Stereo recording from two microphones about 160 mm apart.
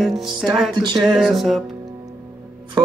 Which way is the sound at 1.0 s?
5° right (ahead or behind).